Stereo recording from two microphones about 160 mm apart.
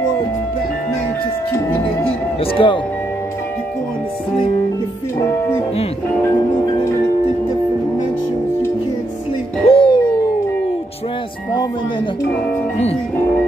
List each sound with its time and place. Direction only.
2.4 s speech: 35° left (ahead or behind)
6.3 s marimba: 25° left (ahead or behind)
9.7 s music: 30° left (ahead or behind)